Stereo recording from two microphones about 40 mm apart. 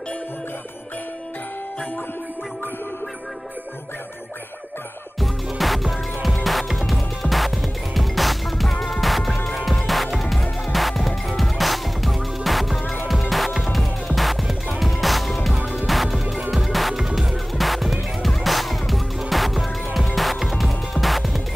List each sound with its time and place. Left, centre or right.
5.6 s music: centre
15.5 s music: right
15.9 s music: centre